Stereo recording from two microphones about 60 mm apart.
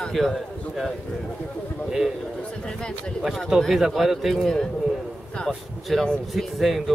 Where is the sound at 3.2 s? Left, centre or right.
Centre.